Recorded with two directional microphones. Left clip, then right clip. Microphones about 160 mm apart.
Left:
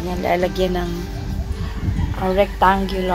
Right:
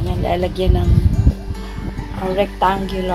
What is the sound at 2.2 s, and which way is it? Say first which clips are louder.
Speech: left 1 dB; 10° left (ahead or behind).